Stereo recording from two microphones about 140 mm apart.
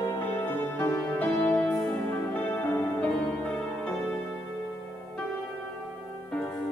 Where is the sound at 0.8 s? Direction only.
10° left (ahead or behind).